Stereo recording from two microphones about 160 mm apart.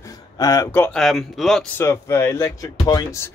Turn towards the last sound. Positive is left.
turn(degrees=20)  # may be behind; listen again after turning